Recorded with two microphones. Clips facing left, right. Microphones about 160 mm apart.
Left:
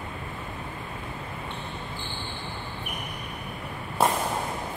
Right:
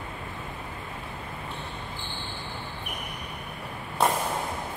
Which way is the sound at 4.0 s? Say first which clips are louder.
Left 1 dB; 5° left (ahead or behind).